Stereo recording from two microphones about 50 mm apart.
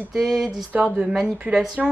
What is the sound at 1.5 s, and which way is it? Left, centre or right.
Speech, right.